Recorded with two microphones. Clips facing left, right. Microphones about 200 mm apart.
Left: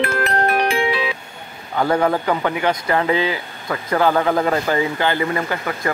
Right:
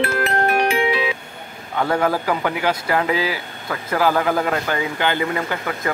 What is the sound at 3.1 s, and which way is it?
Speech, 25° left (ahead or behind).